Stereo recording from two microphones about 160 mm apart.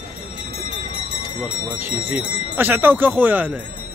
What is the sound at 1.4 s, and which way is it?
Speech, 10° right (ahead or behind).